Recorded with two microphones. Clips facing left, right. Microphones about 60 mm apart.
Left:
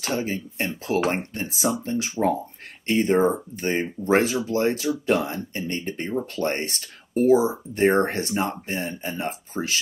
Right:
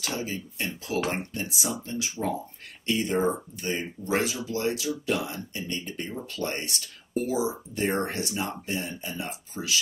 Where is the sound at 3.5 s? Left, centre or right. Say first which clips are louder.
Left 6 dB; left.